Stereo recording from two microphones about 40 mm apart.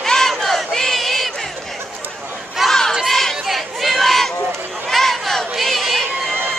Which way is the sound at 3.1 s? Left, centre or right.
Centre.